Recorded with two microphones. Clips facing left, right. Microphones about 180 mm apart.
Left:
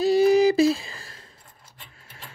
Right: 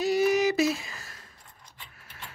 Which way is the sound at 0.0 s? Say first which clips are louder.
Left 6 dB; 30° left (ahead or behind).